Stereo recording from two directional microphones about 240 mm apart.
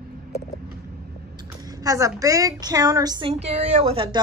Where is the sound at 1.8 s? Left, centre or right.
Centre.